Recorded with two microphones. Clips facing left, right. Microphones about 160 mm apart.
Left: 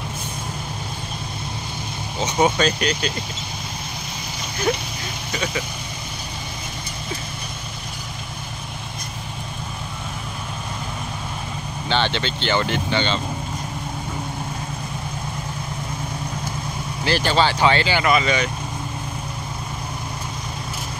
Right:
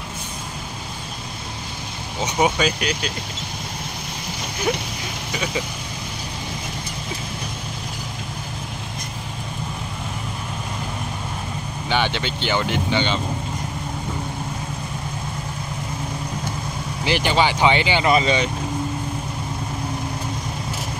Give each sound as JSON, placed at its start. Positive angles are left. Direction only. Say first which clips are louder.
{"t": 2.3, "sound": "speech", "louder": "left 1 dB", "side_deg": -5}
{"t": 11.9, "sound": "speech", "louder": "even", "side_deg": -10}
{"t": 17.0, "sound": "speech", "louder": "even", "side_deg": -15}